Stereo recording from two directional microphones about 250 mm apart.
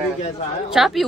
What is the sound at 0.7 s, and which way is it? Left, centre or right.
Speech, centre.